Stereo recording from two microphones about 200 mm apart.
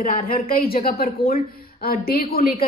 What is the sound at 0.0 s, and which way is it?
A woman's voice, 45° left (ahead or behind).